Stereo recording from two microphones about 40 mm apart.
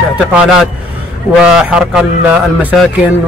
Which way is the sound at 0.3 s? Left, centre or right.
Centre.